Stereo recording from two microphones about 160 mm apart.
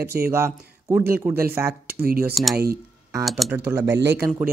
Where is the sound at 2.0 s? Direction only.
70° right (ahead or behind).